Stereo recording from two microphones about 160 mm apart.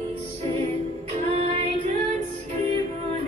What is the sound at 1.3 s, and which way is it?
Music, 40° right (ahead or behind).